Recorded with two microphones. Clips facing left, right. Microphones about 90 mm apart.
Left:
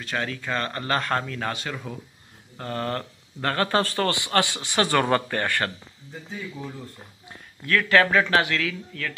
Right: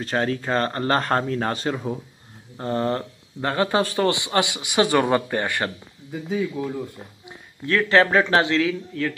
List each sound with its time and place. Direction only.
0.0 s speech: 35° right (ahead or behind); by 5.7 s 15° right (ahead or behind)
6.6 s speech: 90° right
7.2 s speech: 25° right (ahead or behind)